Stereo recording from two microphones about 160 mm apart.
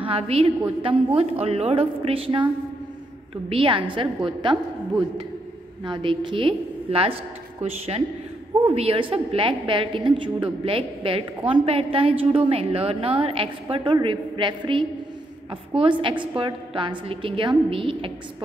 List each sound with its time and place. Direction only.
0.0 s a woman's voice: 35° right (ahead or behind)
3.4 s a woman's voice: 35° right (ahead or behind)
5.9 s a woman's voice: 30° right (ahead or behind)